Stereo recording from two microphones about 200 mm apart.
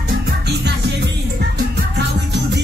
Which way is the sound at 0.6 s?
60° right (ahead or behind).